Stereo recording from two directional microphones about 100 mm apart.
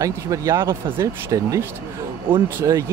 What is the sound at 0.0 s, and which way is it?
Speech, 35° right (ahead or behind).